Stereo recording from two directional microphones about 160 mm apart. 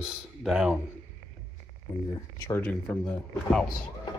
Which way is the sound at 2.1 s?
20° left (ahead or behind).